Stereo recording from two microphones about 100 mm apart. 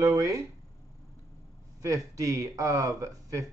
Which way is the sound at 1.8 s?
35° right (ahead or behind).